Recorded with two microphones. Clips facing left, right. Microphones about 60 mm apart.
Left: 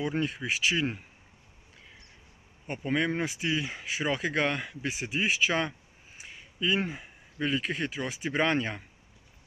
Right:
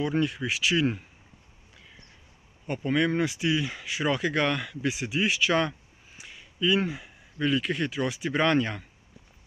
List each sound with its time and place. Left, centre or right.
0.0 s speech: centre
2.6 s speech: centre